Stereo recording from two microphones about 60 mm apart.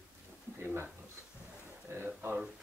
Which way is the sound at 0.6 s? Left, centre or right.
Right.